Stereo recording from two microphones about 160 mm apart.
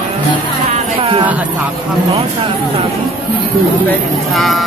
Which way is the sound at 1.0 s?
30° right (ahead or behind).